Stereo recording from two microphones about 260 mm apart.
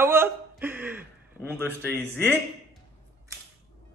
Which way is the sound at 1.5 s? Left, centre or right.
Centre.